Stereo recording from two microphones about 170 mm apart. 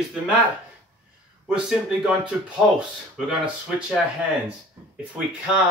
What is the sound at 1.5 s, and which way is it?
Speech, 5° right (ahead or behind).